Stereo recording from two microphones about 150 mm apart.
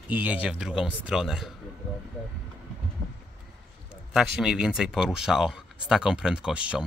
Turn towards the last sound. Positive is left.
turn(degrees=-5)  # may be behind; listen again after turning